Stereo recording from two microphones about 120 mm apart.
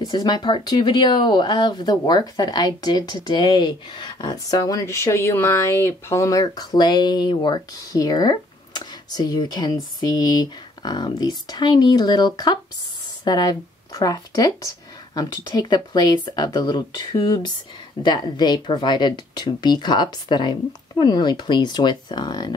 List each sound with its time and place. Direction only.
0.0 s speech: 35° left (ahead or behind)